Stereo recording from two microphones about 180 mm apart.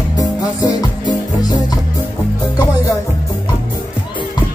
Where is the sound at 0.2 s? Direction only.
20° left (ahead or behind).